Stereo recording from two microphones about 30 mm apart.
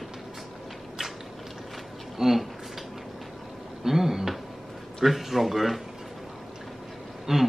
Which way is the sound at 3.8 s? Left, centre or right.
Centre.